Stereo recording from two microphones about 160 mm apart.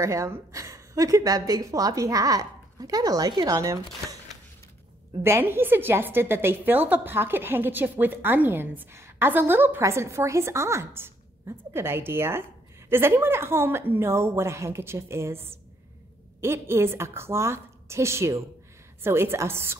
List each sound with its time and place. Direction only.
0.0 s a woman's voice: 20° right (ahead or behind)
5.2 s a woman's voice: 15° right (ahead or behind)